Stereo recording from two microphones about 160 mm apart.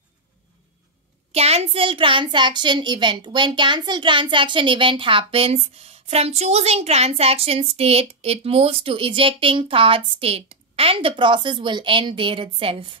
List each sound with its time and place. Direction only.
1.3 s a woman's voice: 40° right (ahead or behind)